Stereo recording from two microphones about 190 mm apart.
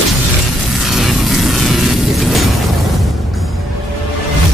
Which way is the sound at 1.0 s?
Centre (ahead or behind).